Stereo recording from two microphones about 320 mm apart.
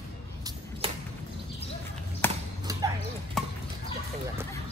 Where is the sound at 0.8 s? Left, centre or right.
Centre.